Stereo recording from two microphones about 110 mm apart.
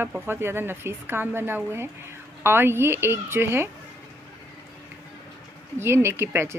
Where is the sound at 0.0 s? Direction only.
20° right (ahead or behind).